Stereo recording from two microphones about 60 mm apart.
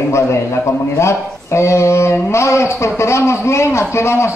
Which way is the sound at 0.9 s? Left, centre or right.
Left.